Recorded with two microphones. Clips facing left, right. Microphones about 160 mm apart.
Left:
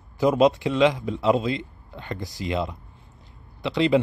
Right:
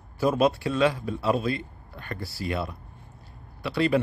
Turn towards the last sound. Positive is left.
turn(degrees=20)  # may be behind; listen again after turning